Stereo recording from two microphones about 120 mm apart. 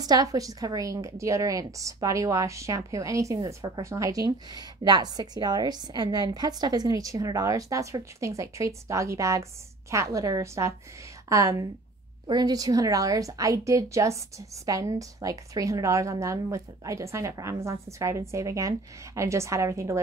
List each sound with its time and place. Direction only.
0.0 s a woman's voice: 30° right (ahead or behind)